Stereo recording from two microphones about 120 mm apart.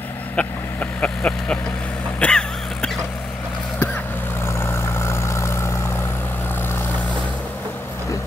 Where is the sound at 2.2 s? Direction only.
5° left (ahead or behind).